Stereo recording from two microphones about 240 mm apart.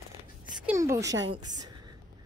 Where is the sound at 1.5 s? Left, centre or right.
Right.